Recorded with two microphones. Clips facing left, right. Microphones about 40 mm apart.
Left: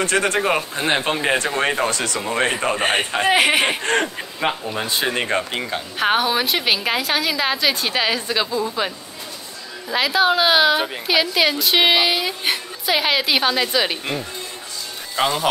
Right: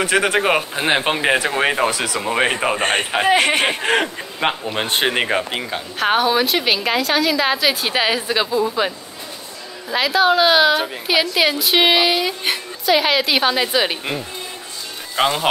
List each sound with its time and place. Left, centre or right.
0.0 s speech: centre
2.8 s a woman's voice: centre
3.8 s speech: centre
4.4 s a man's voice: right
5.3 s a woman's voice: centre